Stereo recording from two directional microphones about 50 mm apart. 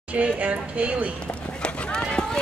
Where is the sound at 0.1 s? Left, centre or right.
Right.